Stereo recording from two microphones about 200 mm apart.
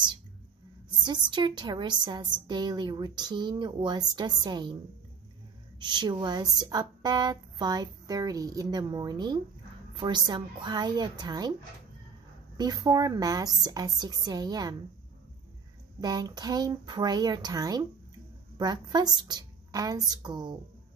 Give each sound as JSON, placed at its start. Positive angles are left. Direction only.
{"t": 0.8, "sound": "speech", "side_deg": -20}
{"t": 5.8, "sound": "speech", "side_deg": -20}
{"t": 12.5, "sound": "speech", "side_deg": -20}
{"t": 16.0, "sound": "speech", "side_deg": -20}